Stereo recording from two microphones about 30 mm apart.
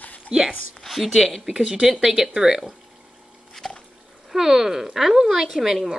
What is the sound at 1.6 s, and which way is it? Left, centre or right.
Speech, right.